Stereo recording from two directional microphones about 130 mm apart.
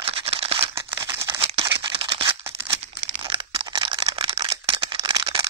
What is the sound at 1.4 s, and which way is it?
Single-lens reflex camera, 45° right (ahead or behind).